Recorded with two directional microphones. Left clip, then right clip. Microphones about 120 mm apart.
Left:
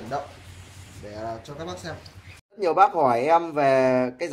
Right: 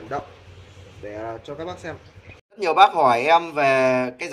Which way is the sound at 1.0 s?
20° right (ahead or behind).